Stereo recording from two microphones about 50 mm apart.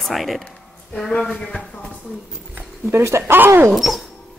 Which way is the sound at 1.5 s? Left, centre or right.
Centre.